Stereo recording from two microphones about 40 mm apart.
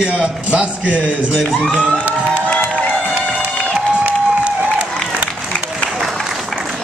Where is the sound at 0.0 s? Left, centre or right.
Centre.